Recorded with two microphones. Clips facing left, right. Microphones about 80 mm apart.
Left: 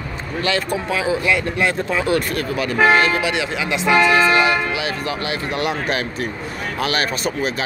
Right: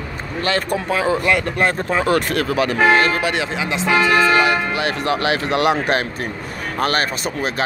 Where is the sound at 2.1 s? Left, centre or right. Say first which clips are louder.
Right 2 dB; right.